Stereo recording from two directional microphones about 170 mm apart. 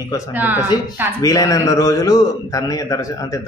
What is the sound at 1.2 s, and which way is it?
Speech, 20° left (ahead or behind).